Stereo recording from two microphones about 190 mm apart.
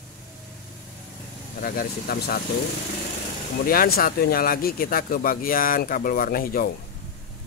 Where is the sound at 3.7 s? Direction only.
50° left (ahead or behind).